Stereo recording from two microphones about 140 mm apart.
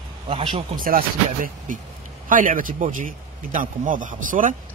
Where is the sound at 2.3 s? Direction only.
75° right (ahead or behind).